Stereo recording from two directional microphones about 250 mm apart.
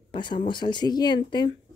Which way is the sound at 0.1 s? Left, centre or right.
Centre.